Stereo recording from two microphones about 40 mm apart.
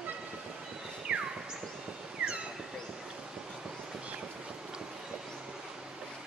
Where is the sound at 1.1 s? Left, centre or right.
Right.